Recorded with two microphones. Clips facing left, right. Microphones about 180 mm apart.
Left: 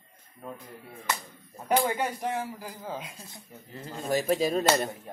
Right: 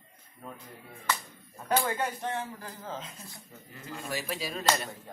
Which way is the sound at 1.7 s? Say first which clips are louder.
Left 3 dB; 15° left (ahead or behind).